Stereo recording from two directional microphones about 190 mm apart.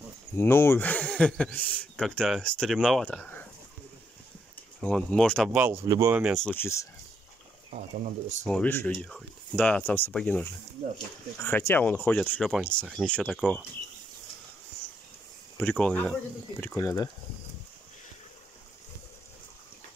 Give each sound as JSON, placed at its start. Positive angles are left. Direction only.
{"t": 0.4, "sound": "a man's voice", "side_deg": 10}
{"t": 4.8, "sound": "a man's voice", "side_deg": 5}
{"t": 6.4, "sound": "speech", "side_deg": 10}
{"t": 8.5, "sound": "a man's voice", "side_deg": 5}
{"t": 15.5, "sound": "a man's voice", "side_deg": 5}